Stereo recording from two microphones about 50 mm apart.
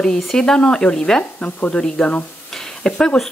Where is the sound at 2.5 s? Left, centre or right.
Centre.